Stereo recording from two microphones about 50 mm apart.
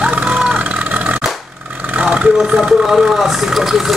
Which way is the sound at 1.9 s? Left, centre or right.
Right.